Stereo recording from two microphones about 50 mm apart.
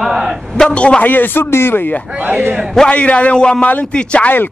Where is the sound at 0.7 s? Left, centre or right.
Left.